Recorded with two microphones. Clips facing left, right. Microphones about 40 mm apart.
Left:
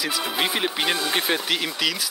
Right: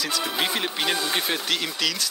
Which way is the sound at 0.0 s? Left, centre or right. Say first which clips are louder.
Left 1 dB; centre.